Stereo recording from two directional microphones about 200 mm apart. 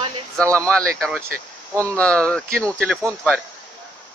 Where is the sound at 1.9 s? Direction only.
5° left (ahead or behind).